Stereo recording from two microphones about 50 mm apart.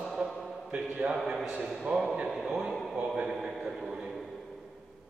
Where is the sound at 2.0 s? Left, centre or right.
Centre.